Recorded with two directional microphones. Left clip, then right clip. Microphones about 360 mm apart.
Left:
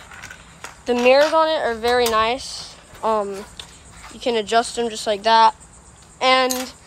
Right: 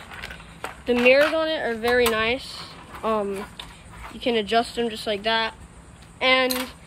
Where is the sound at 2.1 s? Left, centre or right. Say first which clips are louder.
Left 5 dB; centre.